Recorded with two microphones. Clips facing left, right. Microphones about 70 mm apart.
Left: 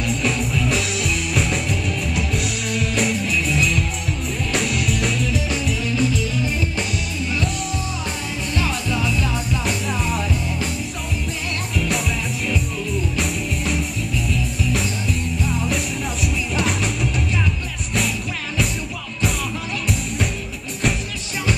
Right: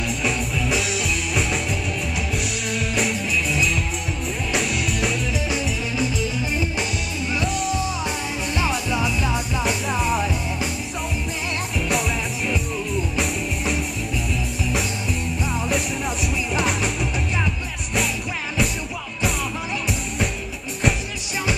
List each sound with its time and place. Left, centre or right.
0.1 s music: centre
5.9 s music: centre
7.4 s music: centre
8.5 s music: centre
9.7 s music: centre
13.2 s music: centre
15.4 s music: centre